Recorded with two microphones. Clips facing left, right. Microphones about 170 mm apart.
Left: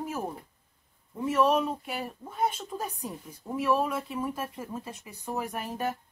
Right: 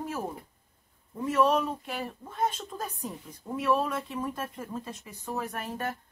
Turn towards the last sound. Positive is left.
turn(degrees=15)  # may be behind; listen again after turning